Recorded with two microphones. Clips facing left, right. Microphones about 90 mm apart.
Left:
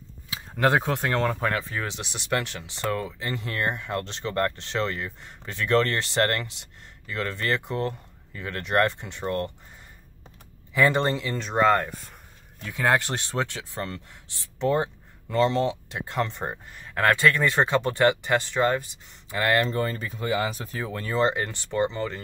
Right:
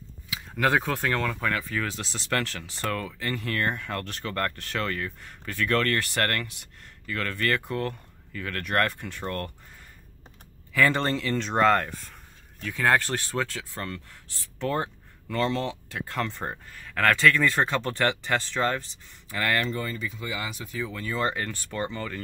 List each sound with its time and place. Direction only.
0.3 s speech: 30° left (ahead or behind)
10.7 s speech: 20° left (ahead or behind)
12.5 s speech: 20° left (ahead or behind)
19.7 s speech: 40° left (ahead or behind)
21.2 s speech: 20° left (ahead or behind)